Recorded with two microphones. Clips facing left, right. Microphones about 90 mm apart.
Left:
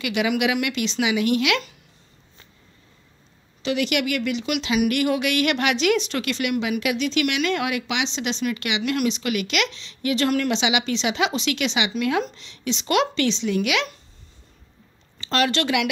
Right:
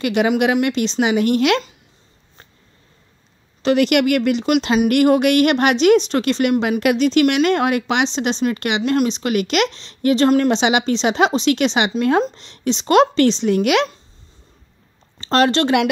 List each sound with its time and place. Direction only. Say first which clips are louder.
0.0 s speech: right 6 dB; 40° right (ahead or behind)
3.6 s speech: right 8 dB; 50° right (ahead or behind)
6.8 s speech: right 8 dB; 45° right (ahead or behind)
15.1 s speech: right 6 dB; 35° right (ahead or behind)